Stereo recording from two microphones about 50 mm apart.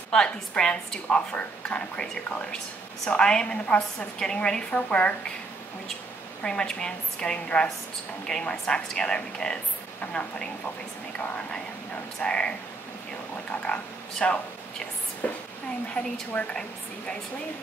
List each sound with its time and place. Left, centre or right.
0.1 s a woman's voice: centre
1.3 s a woman's voice: left
6.4 s a woman's voice: centre
14.2 s a woman's voice: centre
15.2 s a woman's voice: left